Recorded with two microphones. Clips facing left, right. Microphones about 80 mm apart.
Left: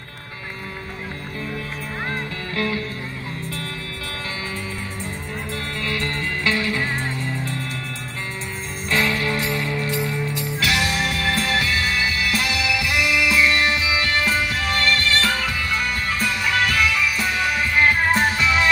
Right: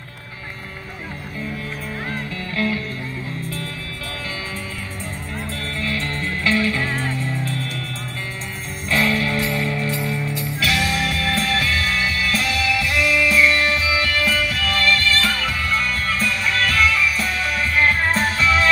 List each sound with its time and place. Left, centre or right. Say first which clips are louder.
6.2 s music: right 4 dB; centre
8.9 s music: right 2 dB; left